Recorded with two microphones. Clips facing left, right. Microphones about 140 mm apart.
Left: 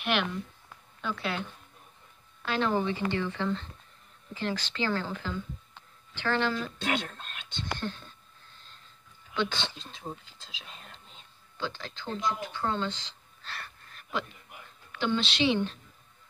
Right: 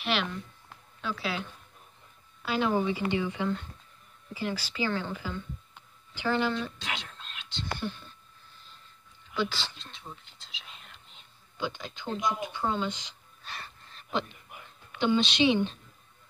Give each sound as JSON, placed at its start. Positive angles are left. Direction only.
{"t": 0.0, "sound": "speech", "side_deg": 0}
{"t": 2.4, "sound": "speech", "side_deg": -10}
{"t": 5.8, "sound": "a sound", "side_deg": -10}
{"t": 6.8, "sound": "speech", "side_deg": 50}
{"t": 7.7, "sound": "speech", "side_deg": -10}
{"t": 9.4, "sound": "speech", "side_deg": -5}
{"t": 10.7, "sound": "whispering", "side_deg": 40}
{"t": 11.5, "sound": "speech", "side_deg": -15}